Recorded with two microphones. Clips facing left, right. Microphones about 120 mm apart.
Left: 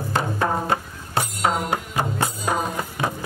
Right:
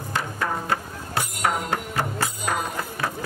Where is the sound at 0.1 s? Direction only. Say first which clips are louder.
Left 4 dB; 30° left (ahead or behind).